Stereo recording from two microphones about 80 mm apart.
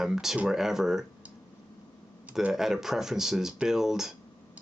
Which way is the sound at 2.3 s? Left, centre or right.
Centre.